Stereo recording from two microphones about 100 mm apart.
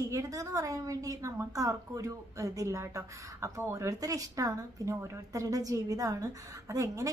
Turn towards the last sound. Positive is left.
turn(degrees=-35)  # may be behind; listen again after turning